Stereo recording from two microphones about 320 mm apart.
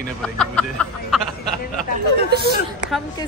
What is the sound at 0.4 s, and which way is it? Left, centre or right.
Speech, centre.